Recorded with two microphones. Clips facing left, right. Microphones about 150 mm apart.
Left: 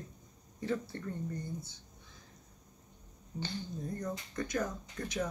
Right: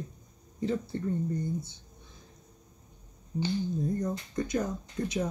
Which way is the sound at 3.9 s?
20° right (ahead or behind).